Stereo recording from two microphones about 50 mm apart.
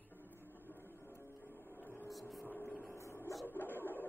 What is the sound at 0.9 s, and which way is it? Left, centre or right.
Music, left.